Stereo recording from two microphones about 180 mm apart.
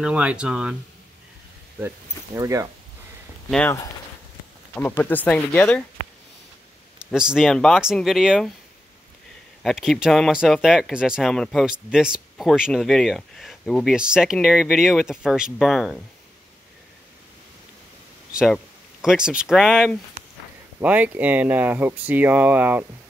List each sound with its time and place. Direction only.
0.0 s speech: 5° right (ahead or behind)
2.3 s speech: 20° right (ahead or behind)
3.4 s speech: 5° left (ahead or behind)
4.7 s speech: 10° left (ahead or behind)
7.1 s speech: 5° right (ahead or behind)
9.6 s speech: centre (ahead or behind)
18.3 s speech: 5° right (ahead or behind)